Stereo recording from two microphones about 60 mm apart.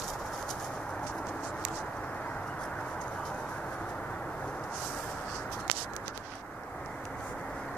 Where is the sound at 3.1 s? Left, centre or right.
Centre.